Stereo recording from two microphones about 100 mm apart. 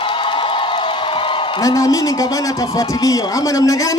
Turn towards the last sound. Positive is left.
turn(degrees=35)  # may be behind; listen again after turning